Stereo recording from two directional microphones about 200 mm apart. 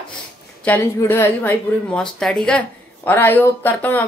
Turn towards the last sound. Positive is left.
turn(degrees=10)  # may be behind; listen again after turning